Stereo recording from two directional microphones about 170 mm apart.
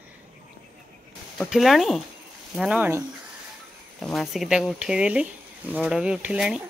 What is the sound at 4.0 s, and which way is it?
Speech, centre (ahead or behind).